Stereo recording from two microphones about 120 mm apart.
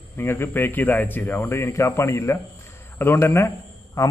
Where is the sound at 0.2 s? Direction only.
20° left (ahead or behind).